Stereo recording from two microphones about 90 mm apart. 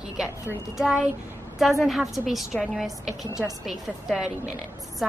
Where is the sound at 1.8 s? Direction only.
Centre (ahead or behind).